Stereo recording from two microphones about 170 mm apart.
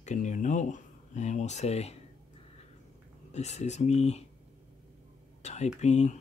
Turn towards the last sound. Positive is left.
turn(degrees=40)  # may be behind; listen again after turning